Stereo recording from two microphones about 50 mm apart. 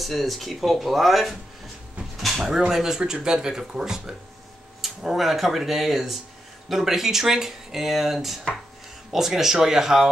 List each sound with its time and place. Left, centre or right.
0.0 s speech: centre